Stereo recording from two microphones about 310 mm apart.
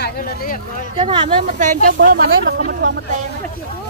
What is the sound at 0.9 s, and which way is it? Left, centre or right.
Speech, centre.